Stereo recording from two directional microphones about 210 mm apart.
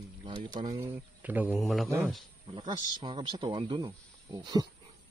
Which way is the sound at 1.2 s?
10° right (ahead or behind).